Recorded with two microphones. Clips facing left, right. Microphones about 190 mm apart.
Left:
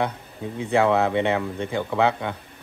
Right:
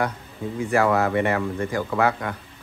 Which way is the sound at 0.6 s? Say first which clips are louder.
Left 1 dB; 20° left (ahead or behind).